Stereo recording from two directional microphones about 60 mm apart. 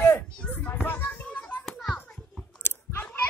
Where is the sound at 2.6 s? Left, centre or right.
Left.